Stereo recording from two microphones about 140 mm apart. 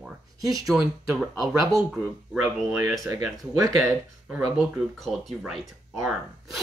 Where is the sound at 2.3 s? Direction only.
20° right (ahead or behind).